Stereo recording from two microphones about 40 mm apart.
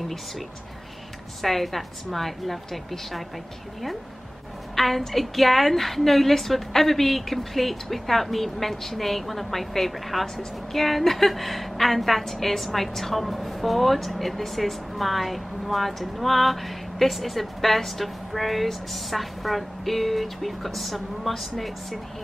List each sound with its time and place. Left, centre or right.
1.4 s a woman's voice: centre
4.7 s a woman's voice: centre